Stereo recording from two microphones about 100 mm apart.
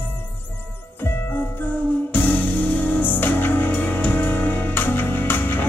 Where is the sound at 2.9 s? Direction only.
20° left (ahead or behind).